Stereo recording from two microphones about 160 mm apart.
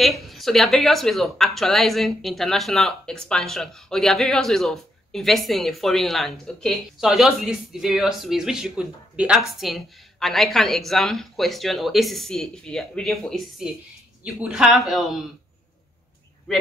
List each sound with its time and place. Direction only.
0.0 s speech: centre (ahead or behind)